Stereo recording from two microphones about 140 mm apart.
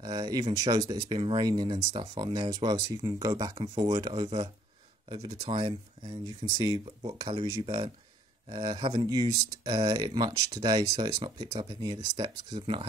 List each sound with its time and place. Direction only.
0.0 s speech: 25° right (ahead or behind)
5.4 s speech: 35° right (ahead or behind)